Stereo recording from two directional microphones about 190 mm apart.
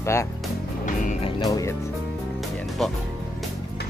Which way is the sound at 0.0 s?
15° left (ahead or behind).